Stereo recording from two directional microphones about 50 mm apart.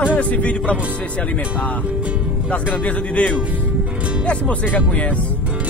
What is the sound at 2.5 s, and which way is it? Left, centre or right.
Speech, left.